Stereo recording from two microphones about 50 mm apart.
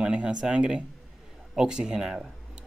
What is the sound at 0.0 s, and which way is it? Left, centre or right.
Speech, right.